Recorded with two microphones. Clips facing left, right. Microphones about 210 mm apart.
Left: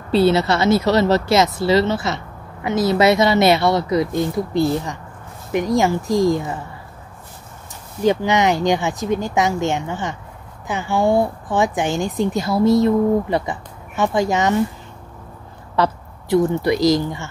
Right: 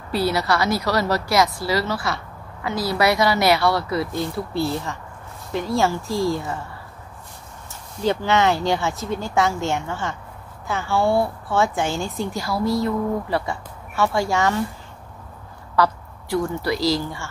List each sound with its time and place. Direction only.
0.1 s a woman's voice: 25° left (ahead or behind)
8.0 s a woman's voice: 15° left (ahead or behind)
15.7 s a woman's voice: 20° left (ahead or behind)